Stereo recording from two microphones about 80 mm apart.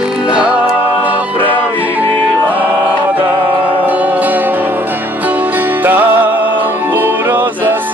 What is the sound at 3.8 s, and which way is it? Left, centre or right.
Music, right.